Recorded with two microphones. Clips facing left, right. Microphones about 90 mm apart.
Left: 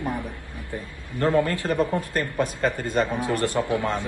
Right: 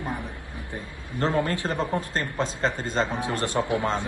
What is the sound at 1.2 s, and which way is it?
A man's voice, 25° right (ahead or behind).